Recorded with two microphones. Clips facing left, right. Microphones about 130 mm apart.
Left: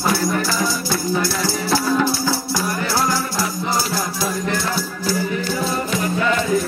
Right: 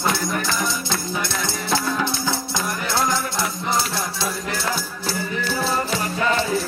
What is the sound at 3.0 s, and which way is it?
Music, 5° left (ahead or behind).